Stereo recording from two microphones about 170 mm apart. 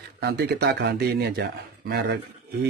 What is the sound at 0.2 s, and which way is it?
Speech, 70° right (ahead or behind).